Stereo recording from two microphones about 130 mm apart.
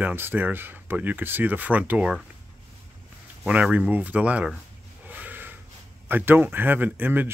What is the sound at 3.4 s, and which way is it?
Speech, 10° right (ahead or behind).